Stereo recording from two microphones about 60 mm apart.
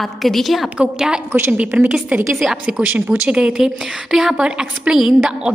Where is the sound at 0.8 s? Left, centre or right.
Centre.